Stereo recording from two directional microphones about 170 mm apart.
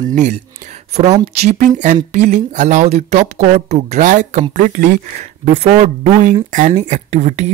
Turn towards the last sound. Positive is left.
turn(degrees=-40)  # may be behind; listen again after turning